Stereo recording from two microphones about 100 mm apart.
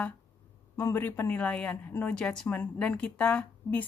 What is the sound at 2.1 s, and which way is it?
Speech, 10° left (ahead or behind).